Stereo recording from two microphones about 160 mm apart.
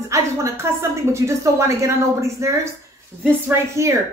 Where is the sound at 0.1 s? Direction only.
15° right (ahead or behind).